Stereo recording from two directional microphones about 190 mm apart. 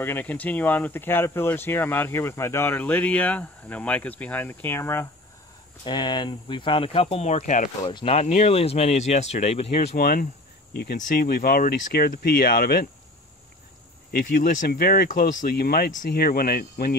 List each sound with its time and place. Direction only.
0.0 s speech: 10° left (ahead or behind)
5.9 s speech: 25° left (ahead or behind); by 7.7 s 40° left (ahead or behind)
7.8 s speech: 25° left (ahead or behind)
9.8 s speech: 50° left (ahead or behind)
14.1 s speech: 55° left (ahead or behind)